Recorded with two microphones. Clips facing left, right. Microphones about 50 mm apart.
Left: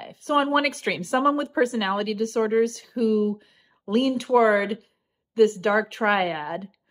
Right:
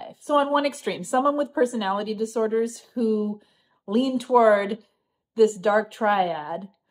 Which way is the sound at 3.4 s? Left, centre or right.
Left.